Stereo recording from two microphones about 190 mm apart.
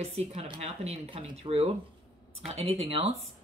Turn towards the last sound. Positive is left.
turn(degrees=-30)  # may be behind; listen again after turning